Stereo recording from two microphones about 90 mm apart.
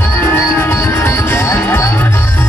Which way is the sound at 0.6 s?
30° left (ahead or behind).